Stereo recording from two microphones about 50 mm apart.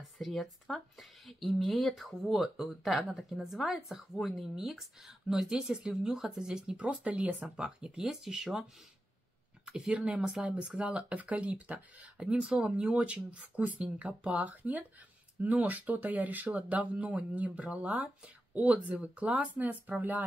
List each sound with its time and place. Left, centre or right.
0.2 s speech: centre; by 7.5 s right
7.5 s speech: centre
9.7 s speech: right